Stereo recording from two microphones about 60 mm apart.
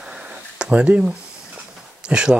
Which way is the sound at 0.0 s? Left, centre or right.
Centre.